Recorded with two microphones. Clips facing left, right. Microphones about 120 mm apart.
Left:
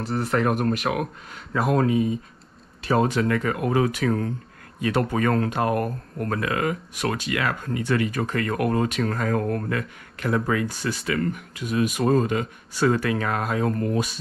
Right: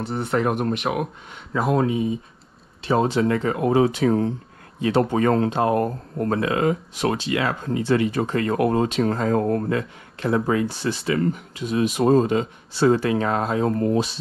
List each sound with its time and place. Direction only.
0.0 s speech: centre (ahead or behind)
0.9 s speech: 25° right (ahead or behind)
1.9 s speech: 5° right (ahead or behind)
2.9 s speech: 25° right (ahead or behind)